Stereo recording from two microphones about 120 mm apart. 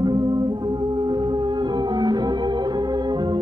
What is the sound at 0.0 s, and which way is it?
Music, 35° right (ahead or behind).